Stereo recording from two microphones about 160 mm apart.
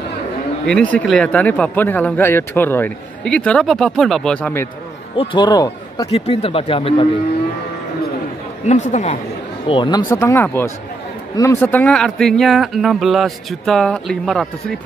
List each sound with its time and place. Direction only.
0.7 s speech: 5° left (ahead or behind)
5.1 s speech: 30° left (ahead or behind)
6.1 s speech: 40° left (ahead or behind)
8.6 s speech: 50° left (ahead or behind)
9.7 s speech: 30° left (ahead or behind)
10.1 s speech: 15° left (ahead or behind)